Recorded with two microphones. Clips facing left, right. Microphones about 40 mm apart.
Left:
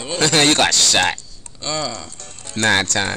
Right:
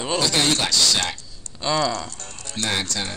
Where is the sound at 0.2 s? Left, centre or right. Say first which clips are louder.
Left 9 dB; left.